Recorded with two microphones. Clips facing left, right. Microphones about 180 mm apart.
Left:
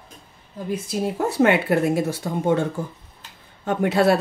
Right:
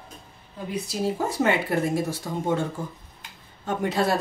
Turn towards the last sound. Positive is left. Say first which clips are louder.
# left 6 dB
turn(degrees=70)  # may be behind; listen again after turning